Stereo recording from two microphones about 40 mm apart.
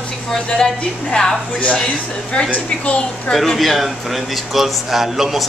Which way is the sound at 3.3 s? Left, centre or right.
Centre.